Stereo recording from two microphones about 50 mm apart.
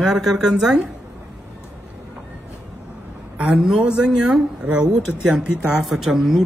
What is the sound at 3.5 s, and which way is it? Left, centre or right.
Speech, centre.